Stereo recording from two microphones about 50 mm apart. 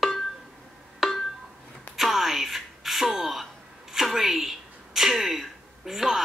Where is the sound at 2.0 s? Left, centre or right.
Centre.